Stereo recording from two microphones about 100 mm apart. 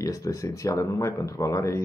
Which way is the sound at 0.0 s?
35° left (ahead or behind).